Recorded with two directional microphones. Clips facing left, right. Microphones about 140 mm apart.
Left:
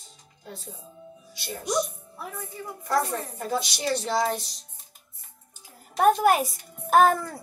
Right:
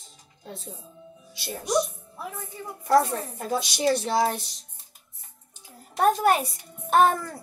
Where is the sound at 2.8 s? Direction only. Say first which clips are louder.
Right 5 dB; 25° right (ahead or behind).